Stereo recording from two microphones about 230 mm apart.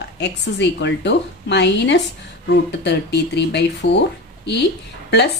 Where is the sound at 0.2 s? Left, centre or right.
Left.